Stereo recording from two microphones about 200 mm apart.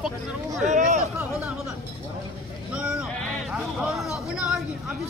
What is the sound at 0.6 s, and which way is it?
Speech, 35° right (ahead or behind).